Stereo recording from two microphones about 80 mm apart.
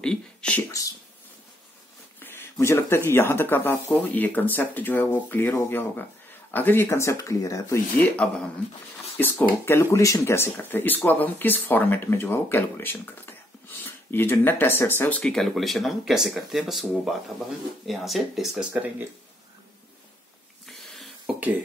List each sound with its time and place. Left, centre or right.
0.0 s speech: centre
2.1 s a sound: left
2.6 s speech: left
8.2 s speech: centre
9.1 s speech: left
15.3 s speech: centre
18.7 s speech: right
20.6 s a sound: centre
21.3 s a sound: centre